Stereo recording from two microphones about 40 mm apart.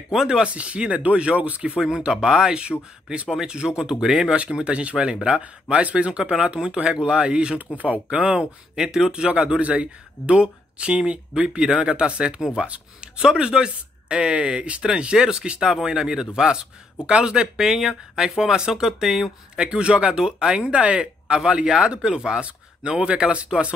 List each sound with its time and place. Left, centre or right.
0.1 s a man's voice: centre
0.4 s speech: right
1.8 s a man's voice: centre
7.7 s speech: right
8.4 s a man's voice: centre
9.6 s a man's voice: right; by 19.3 s centre
19.5 s a man's voice: right